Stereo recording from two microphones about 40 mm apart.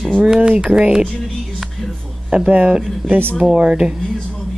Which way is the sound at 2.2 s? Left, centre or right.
Right.